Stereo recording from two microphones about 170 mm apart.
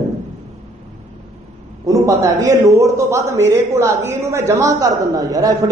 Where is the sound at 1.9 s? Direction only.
20° right (ahead or behind).